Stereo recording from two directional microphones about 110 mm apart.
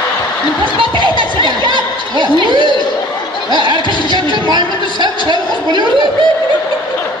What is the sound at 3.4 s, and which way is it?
Music, 45° right (ahead or behind).